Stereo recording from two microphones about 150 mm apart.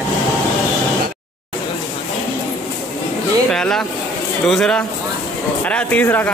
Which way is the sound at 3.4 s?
5° left (ahead or behind).